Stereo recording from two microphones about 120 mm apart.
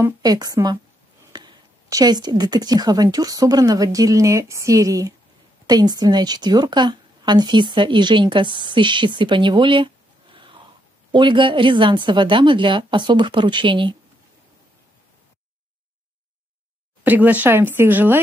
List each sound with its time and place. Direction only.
0.0 s a woman's voice: 30° right (ahead or behind)
17.0 s speech: 15° right (ahead or behind)